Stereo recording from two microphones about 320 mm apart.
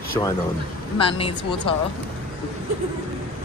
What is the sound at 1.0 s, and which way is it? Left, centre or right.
Speech, centre.